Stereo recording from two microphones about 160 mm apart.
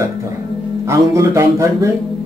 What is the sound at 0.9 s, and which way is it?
Music, 20° right (ahead or behind).